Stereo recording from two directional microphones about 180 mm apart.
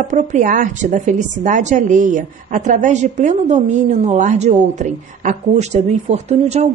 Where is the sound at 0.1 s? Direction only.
45° right (ahead or behind).